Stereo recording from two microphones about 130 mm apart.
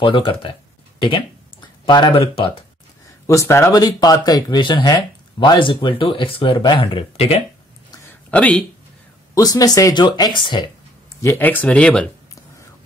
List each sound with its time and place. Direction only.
0.0 s speech: 40° left (ahead or behind)
3.3 s speech: 20° left (ahead or behind); by 7.4 s 50° left (ahead or behind)
8.3 s speech: 10° left (ahead or behind)
9.3 s speech: 30° left (ahead or behind)
11.1 s speech: 20° left (ahead or behind)